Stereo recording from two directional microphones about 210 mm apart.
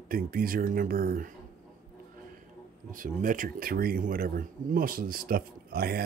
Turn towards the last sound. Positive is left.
turn(degrees=-45)  # may be behind; listen again after turning